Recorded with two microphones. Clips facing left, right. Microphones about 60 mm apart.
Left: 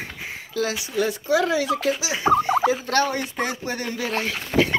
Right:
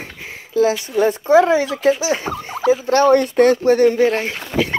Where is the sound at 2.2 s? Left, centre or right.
Left.